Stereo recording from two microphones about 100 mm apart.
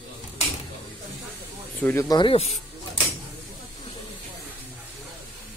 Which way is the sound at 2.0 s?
45° left (ahead or behind).